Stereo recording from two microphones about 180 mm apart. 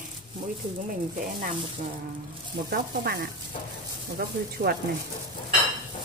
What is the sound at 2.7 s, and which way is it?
Speech, 60° right (ahead or behind).